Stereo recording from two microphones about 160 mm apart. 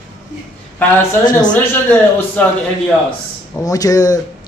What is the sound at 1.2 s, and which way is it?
Speech, 25° left (ahead or behind).